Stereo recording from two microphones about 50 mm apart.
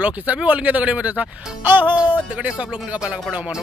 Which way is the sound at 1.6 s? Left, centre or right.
Right.